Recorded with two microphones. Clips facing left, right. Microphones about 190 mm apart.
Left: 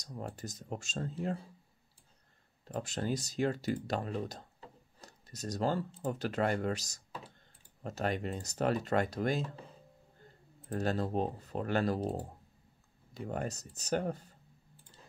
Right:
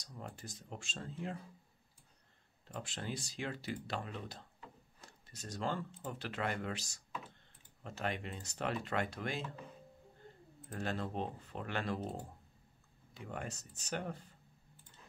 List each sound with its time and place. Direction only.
0.0 s speech: 35° left (ahead or behind)
2.7 s speech: 40° left (ahead or behind)
10.7 s speech: 40° left (ahead or behind)